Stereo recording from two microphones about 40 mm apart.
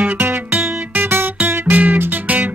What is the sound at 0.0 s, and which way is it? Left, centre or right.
Music, right.